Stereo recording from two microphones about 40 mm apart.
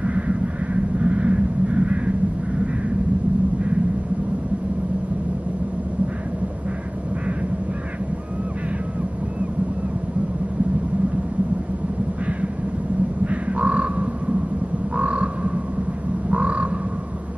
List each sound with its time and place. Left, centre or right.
0.0 s vehicle: right
13.3 s crow: right
15.0 s frog: right
16.3 s crow: right